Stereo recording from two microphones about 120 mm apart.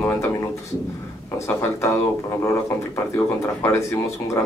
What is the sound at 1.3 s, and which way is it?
Speech, 25° left (ahead or behind).